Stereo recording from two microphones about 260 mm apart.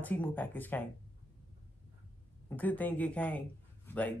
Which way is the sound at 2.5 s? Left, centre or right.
Centre.